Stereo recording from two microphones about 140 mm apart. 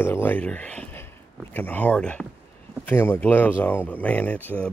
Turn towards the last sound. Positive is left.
turn(degrees=10)  # may be behind; listen again after turning